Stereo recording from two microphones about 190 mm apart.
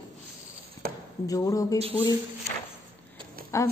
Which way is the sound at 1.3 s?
15° left (ahead or behind).